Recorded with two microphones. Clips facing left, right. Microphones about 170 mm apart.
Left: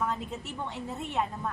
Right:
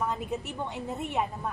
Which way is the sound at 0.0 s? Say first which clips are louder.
Right 2 dB; 15° right (ahead or behind).